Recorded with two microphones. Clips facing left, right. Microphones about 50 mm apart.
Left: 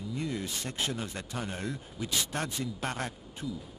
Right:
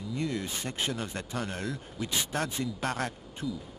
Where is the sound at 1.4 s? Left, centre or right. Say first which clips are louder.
Right 1 dB; centre.